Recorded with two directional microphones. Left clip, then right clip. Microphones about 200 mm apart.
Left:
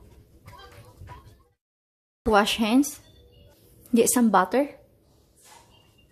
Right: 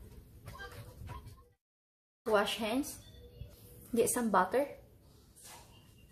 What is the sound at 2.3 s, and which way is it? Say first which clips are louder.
Speech: left 10 dB; 55° left (ahead or behind).